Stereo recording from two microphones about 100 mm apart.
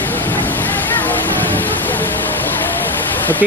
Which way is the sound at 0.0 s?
20° left (ahead or behind).